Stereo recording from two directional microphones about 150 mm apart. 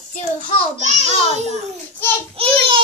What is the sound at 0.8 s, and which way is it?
Speech, 50° right (ahead or behind).